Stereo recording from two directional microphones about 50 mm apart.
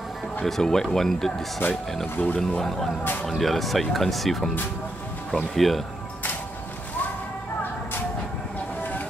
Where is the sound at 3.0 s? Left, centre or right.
Left.